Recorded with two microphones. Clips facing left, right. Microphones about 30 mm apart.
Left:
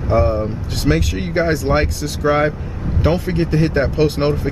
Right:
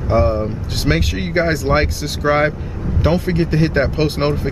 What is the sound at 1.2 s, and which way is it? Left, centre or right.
Speech, centre.